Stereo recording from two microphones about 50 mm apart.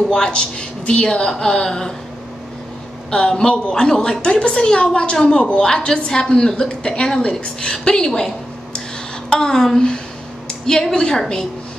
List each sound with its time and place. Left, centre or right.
0.1 s a woman's voice: centre
3.1 s a woman's voice: centre
9.3 s a woman's voice: centre